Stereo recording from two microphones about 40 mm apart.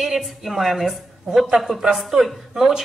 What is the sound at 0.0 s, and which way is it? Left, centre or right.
A woman's voice, centre.